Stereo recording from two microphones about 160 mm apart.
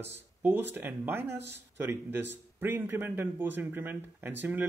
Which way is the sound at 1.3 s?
90° right.